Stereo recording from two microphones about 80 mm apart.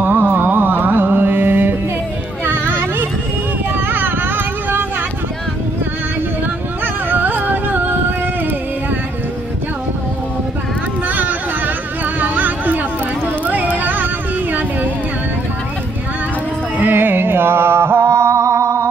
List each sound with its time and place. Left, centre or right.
0.0 s music: right
2.4 s a sound: right
3.7 s vehicle: right
6.8 s music: right
11.1 s a sound: right
16.8 s music: right